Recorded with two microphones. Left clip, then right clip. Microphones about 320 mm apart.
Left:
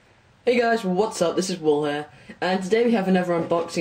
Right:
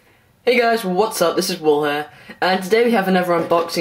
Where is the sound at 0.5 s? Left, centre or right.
Centre.